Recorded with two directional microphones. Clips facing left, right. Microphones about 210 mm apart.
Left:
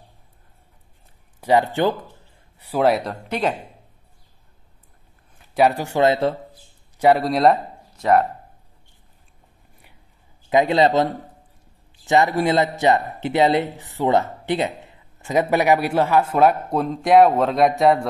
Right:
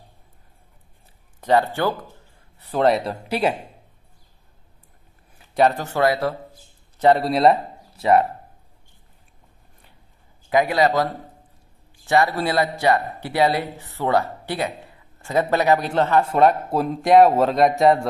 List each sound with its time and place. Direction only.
1.4 s a man's voice: 15° left (ahead or behind)
2.6 s speech: 5° left (ahead or behind)
5.5 s a man's voice: 10° left (ahead or behind); by 6.3 s 25° left (ahead or behind)
7.0 s speech: 10° left (ahead or behind)
10.5 s speech: 25° left (ahead or behind)
12.1 s a man's voice: 20° left (ahead or behind); by 18.0 s centre (ahead or behind)